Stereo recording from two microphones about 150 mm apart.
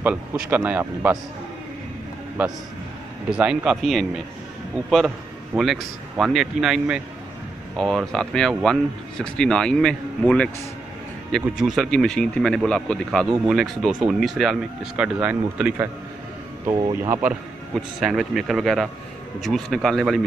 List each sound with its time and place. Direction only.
0.0 s speech: 10° right (ahead or behind)
3.3 s speech: 5° right (ahead or behind)
16.7 s speech: 30° right (ahead or behind)
17.1 s speech: 5° right (ahead or behind)